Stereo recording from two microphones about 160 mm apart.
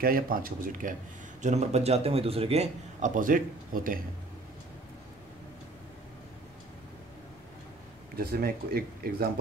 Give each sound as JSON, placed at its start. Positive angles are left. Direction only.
{"t": 0.0, "sound": "speech", "side_deg": -65}
{"t": 1.4, "sound": "a man's voice", "side_deg": -45}
{"t": 3.2, "sound": "speech", "side_deg": -60}
{"t": 8.2, "sound": "speech", "side_deg": -70}